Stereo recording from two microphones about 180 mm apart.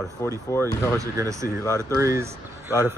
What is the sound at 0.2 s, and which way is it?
Speech, 15° left (ahead or behind).